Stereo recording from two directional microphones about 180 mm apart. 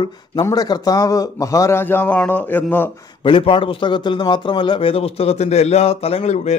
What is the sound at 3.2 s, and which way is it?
A man's voice, 30° left (ahead or behind).